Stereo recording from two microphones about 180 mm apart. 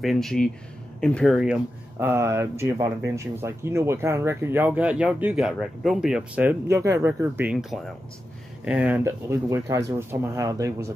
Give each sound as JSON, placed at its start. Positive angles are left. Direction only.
{"t": 0.0, "sound": "speech", "side_deg": 0}
{"t": 7.5, "sound": "speech", "side_deg": 0}